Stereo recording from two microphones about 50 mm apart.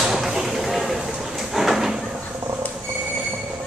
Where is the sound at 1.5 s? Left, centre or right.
Centre.